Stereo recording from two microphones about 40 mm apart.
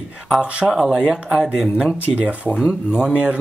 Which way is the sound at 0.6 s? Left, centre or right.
Centre.